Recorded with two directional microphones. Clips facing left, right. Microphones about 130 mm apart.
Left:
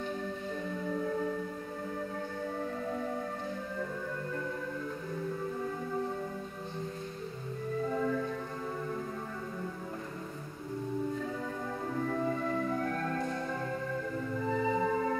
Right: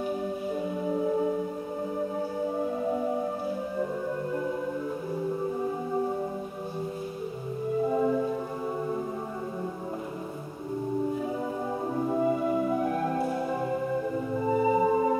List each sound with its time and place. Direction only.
0.8 s music: 20° right (ahead or behind)
7.8 s music: 20° right (ahead or behind)
11.9 s music: 25° right (ahead or behind)